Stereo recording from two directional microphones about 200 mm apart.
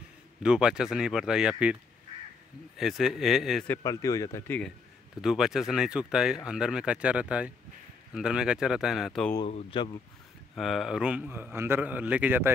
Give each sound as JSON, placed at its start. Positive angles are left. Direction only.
{"t": 0.4, "sound": "speech", "side_deg": -5}
{"t": 2.8, "sound": "speech", "side_deg": 0}
{"t": 3.7, "sound": "speech", "side_deg": 15}
{"t": 9.5, "sound": "speech", "side_deg": 35}
{"t": 10.5, "sound": "a man's voice", "side_deg": 0}